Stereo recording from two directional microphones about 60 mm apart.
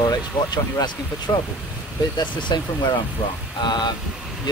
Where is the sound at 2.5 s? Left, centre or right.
Left.